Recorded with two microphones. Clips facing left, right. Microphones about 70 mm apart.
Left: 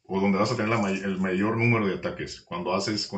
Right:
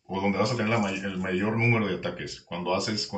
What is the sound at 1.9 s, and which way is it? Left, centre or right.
Speech, centre.